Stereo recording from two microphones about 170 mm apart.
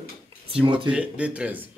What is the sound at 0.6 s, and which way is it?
Speech, 30° right (ahead or behind).